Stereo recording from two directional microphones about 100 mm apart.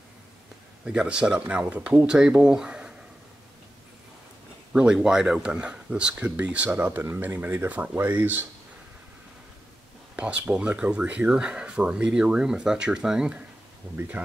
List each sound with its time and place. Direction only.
0.8 s speech: 10° right (ahead or behind)
4.7 s speech: 10° right (ahead or behind)
10.1 s speech: 15° right (ahead or behind)